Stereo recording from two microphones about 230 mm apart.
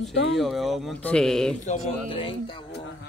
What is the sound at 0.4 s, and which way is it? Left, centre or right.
Speech, centre.